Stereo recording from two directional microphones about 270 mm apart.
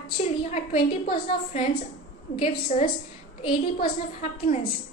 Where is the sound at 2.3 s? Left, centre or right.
Left.